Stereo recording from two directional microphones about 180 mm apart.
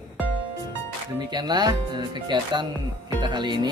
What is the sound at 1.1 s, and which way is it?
Speech, 20° right (ahead or behind).